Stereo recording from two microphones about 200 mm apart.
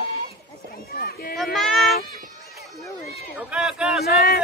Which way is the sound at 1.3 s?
Centre (ahead or behind).